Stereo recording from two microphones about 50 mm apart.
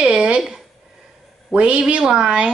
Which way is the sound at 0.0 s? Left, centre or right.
Right.